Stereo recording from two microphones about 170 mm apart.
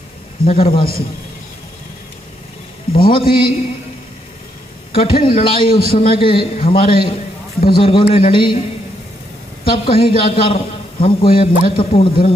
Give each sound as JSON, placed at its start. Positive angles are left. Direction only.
{"t": 0.5, "sound": "a man's voice", "side_deg": 35}
{"t": 3.1, "sound": "a man's voice", "side_deg": 30}
{"t": 4.9, "sound": "a man's voice", "side_deg": 35}
{"t": 9.7, "sound": "a man's voice", "side_deg": 30}